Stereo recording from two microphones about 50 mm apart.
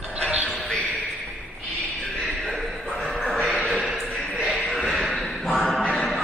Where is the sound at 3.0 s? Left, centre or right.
Centre.